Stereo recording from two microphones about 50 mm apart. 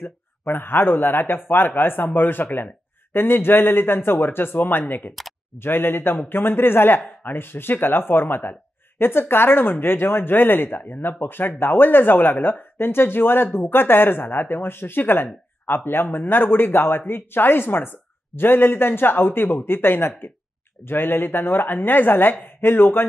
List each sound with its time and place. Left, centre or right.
0.0 s a man's voice: left